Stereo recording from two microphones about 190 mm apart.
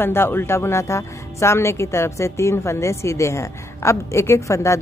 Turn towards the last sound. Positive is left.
turn(degrees=15)  # may be behind; listen again after turning